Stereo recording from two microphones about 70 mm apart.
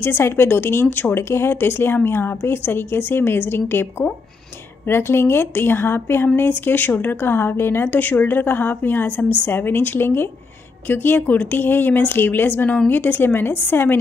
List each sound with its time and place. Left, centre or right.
0.0 s a woman's voice: left